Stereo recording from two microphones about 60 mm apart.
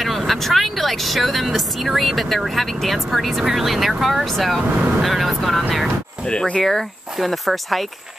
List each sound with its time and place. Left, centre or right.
0.0 s speech: centre
6.2 s speech: centre
6.6 s speech: centre